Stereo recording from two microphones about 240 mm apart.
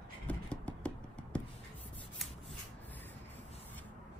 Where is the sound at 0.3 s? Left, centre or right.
Centre.